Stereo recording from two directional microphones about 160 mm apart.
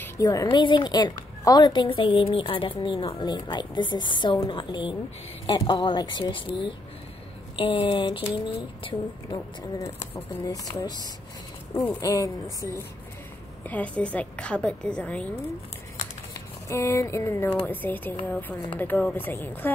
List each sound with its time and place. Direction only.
0.0 s a woman's voice: 20° left (ahead or behind)
12.0 s a woman's voice: 20° left (ahead or behind)
13.7 s a woman's voice: 10° left (ahead or behind)
16.6 s a woman's voice: 20° left (ahead or behind)